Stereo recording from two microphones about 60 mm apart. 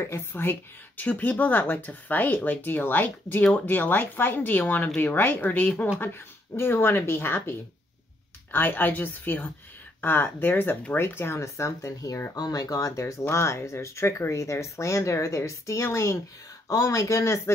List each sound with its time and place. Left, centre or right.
0.0 s speech: left
12.4 s speech: left
13.2 s speech: left
16.6 s speech: left